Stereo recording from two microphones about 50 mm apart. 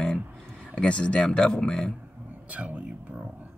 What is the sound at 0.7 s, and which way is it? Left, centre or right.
Speech, left.